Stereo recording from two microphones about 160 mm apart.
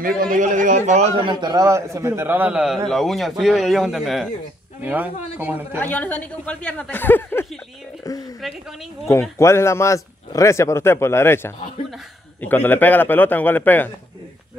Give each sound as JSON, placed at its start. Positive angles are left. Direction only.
{"t": 0.2, "sound": "a man's voice", "side_deg": -55}
{"t": 1.3, "sound": "a man's voice", "side_deg": -25}
{"t": 5.8, "sound": "a man's voice", "side_deg": 10}
{"t": 9.4, "sound": "a man's voice", "side_deg": 15}